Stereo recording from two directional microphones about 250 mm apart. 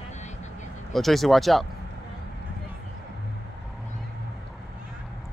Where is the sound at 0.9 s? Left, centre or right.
Centre.